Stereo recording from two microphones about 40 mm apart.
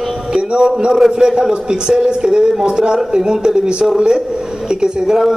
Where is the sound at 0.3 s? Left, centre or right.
Right.